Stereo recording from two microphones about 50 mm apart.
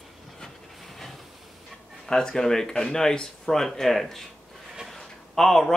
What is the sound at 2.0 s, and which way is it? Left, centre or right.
Speech, centre.